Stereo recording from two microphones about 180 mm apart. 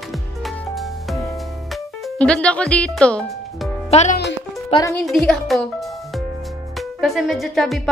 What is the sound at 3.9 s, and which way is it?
Speech, 40° left (ahead or behind).